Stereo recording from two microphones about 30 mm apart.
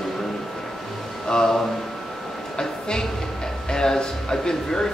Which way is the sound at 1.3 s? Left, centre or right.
Centre.